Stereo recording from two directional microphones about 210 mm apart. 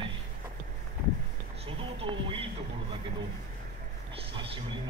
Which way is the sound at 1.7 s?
25° right (ahead or behind).